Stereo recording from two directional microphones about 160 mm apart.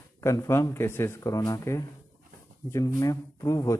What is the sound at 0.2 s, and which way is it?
Speech, 20° left (ahead or behind).